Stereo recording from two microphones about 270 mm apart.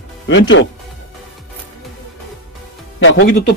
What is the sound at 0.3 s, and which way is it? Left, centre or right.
Speech, left.